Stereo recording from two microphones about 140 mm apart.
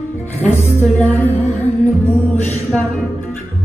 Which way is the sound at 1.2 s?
50° left (ahead or behind).